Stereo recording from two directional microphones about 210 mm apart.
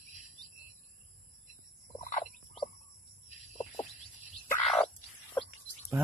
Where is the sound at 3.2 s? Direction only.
35° left (ahead or behind).